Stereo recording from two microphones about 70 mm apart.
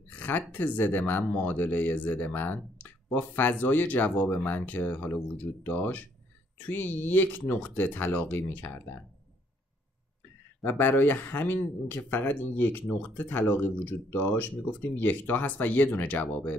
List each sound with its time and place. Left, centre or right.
0.1 s speech: left
10.6 s speech: left